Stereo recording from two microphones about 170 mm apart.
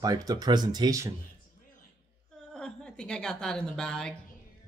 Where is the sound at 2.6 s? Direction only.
5° left (ahead or behind).